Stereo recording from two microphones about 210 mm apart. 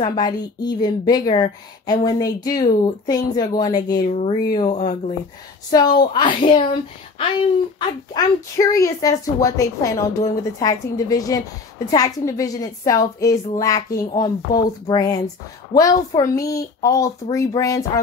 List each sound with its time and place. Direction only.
0.0 s a woman's voice: 20° left (ahead or behind)
4.1 s speech: 30° left (ahead or behind)
4.5 s a woman's voice: 20° left (ahead or behind)
4.7 s speech: 35° left (ahead or behind)
5.7 s a woman's voice: 20° left (ahead or behind)
8.1 s a woman's voice: 15° left (ahead or behind)